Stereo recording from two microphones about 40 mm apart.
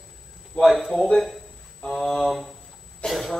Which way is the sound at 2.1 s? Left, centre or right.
Centre.